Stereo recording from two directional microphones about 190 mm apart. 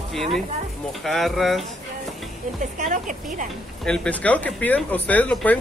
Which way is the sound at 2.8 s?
45° right (ahead or behind).